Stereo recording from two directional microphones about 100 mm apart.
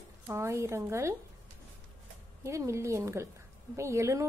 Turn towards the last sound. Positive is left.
turn(degrees=-30)  # may be behind; listen again after turning